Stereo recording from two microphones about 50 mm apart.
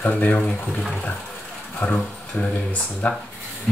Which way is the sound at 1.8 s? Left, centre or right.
Left.